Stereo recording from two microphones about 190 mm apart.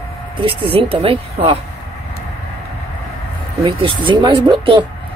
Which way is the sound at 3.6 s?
25° right (ahead or behind).